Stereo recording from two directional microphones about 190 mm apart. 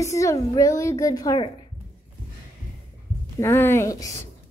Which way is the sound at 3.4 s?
10° left (ahead or behind).